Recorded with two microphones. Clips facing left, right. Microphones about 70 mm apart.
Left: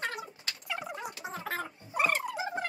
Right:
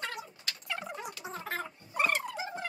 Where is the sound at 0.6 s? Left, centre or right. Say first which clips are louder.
Left 1 dB; centre.